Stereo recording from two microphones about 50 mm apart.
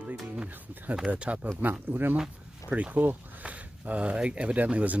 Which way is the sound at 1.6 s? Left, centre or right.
Right.